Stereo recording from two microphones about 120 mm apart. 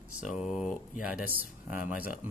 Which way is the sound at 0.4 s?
Centre (ahead or behind).